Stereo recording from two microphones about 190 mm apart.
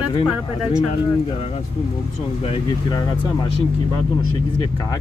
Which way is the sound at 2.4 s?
25° left (ahead or behind).